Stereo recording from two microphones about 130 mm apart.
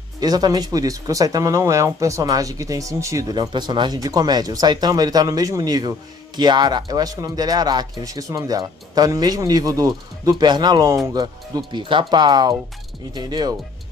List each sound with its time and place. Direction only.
0.2 s speech: 30° right (ahead or behind)